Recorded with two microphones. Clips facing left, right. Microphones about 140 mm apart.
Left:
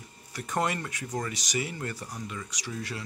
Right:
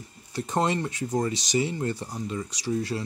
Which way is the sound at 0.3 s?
25° right (ahead or behind).